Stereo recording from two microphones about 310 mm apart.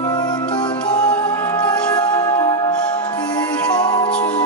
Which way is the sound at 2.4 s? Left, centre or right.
Centre.